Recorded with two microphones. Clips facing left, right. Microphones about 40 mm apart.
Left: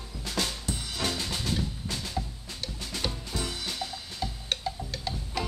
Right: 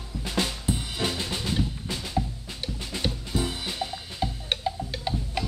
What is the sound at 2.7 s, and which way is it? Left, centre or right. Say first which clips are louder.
Music: right 3 dB; centre.